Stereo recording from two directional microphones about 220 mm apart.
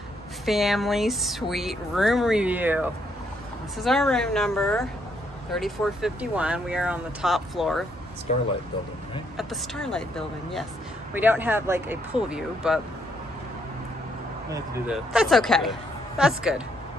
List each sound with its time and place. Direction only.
0.5 s speech: centre (ahead or behind)
8.3 s speech: 30° left (ahead or behind)
9.4 s speech: centre (ahead or behind)
11.1 s speech: 10° right (ahead or behind)
14.9 s speech: centre (ahead or behind)